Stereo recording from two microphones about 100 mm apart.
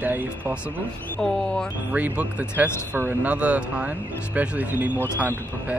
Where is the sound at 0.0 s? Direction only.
15° right (ahead or behind).